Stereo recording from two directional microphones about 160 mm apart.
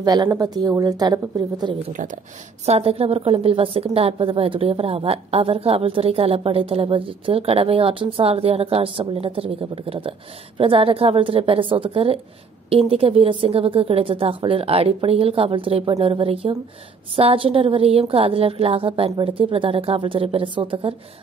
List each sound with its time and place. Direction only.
0.0 s a woman's voice: 25° right (ahead or behind)
1.9 s speech: 55° right (ahead or behind)
2.6 s a woman's voice: 40° right (ahead or behind)